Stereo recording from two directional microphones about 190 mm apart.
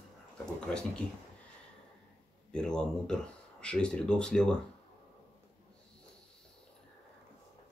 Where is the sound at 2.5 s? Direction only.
5° left (ahead or behind).